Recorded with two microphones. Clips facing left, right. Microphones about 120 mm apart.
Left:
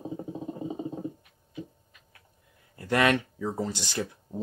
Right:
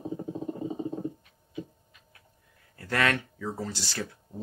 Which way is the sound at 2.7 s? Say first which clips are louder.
Left 4 dB; 20° left (ahead or behind).